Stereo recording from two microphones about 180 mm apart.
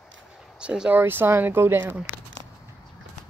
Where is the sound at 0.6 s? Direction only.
5° right (ahead or behind).